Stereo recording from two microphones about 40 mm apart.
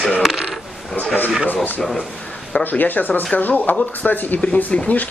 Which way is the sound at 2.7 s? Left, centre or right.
Left.